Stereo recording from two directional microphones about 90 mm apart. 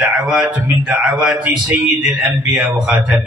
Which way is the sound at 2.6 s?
10° right (ahead or behind).